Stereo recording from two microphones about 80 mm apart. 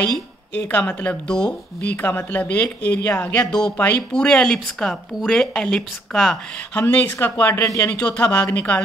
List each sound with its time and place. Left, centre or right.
0.6 s speech: centre
3.7 s speech: left
6.7 s speech: centre